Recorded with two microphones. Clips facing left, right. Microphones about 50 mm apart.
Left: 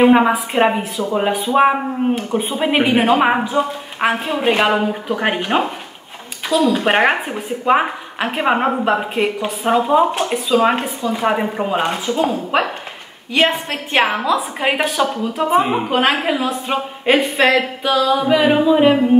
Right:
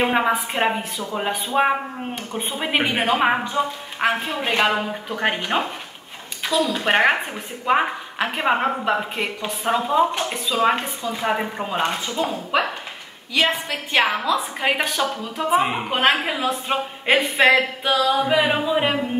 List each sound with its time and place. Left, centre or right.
0.1 s a woman's voice: centre
2.6 s a woman's voice: centre
12.2 s a woman's voice: left
13.9 s a woman's voice: centre
15.5 s a woman's voice: centre